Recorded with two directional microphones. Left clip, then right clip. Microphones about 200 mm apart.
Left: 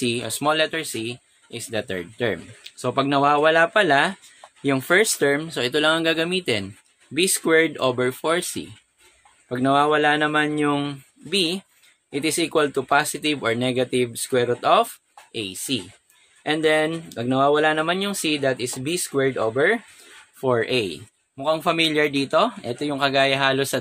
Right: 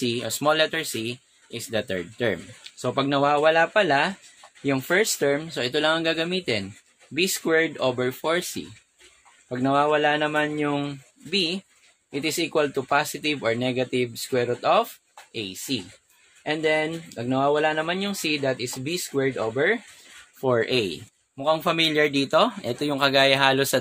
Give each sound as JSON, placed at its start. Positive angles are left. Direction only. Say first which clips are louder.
{"t": 0.0, "sound": "speech", "louder": "left 1 dB", "side_deg": 10}
{"t": 20.3, "sound": "a man's voice", "louder": "left 1 dB", "side_deg": 5}